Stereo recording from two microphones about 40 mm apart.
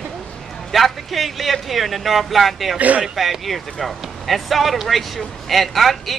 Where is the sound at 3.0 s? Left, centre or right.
Centre.